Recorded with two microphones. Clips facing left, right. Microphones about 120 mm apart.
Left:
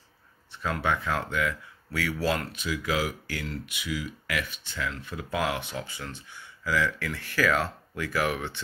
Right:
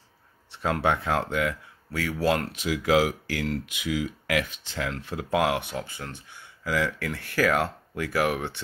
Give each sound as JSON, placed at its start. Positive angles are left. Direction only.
{"t": 0.7, "sound": "speech", "side_deg": -60}
{"t": 1.9, "sound": "speech", "side_deg": -40}
{"t": 2.5, "sound": "speech", "side_deg": -90}
{"t": 5.9, "sound": "speech", "side_deg": -50}